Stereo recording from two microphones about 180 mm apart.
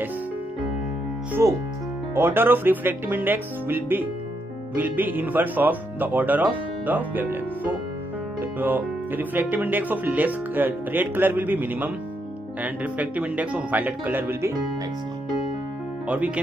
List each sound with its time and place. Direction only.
1.4 s speech: 15° right (ahead or behind)